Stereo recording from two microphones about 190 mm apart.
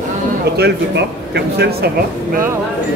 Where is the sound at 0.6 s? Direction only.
60° right (ahead or behind).